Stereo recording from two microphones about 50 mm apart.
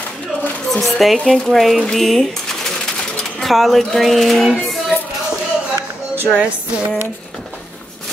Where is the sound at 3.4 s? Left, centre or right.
Centre.